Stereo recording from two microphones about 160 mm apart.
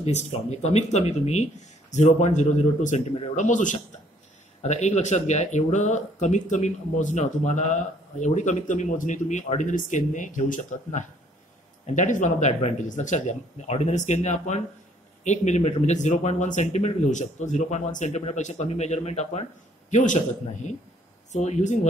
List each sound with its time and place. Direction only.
0.0 s speech: 45° left (ahead or behind)
21.3 s speech: 45° left (ahead or behind)